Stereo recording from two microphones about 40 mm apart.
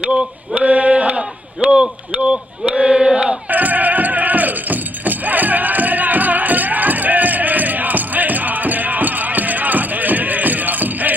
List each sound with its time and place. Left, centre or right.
0.6 s male singing: right
2.7 s a sound: right
3.4 s music: right